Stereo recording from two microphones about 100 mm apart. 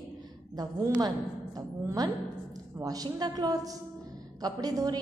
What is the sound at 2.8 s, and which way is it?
A woman's voice, 40° right (ahead or behind).